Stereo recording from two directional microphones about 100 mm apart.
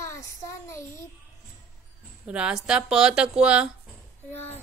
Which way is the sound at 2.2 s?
10° right (ahead or behind).